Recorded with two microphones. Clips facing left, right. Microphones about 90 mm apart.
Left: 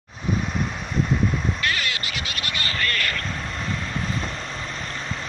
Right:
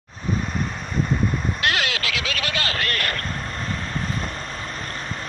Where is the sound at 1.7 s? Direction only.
90° right.